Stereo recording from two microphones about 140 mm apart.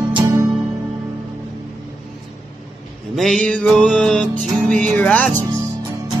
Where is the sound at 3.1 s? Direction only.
5° left (ahead or behind).